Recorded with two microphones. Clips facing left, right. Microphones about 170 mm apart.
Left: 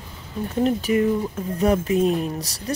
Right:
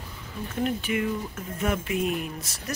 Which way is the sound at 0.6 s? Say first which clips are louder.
Left 7 dB; 40° left (ahead or behind).